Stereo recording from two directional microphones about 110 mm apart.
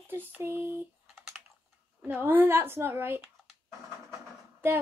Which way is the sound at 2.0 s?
20° right (ahead or behind).